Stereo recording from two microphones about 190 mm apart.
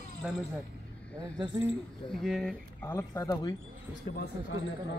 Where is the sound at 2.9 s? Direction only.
15° left (ahead or behind).